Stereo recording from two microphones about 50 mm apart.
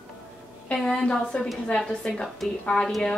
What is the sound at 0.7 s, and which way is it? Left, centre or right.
Speech, centre.